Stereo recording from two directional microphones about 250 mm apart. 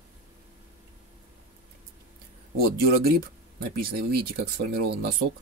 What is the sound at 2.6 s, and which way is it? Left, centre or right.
Speech, right.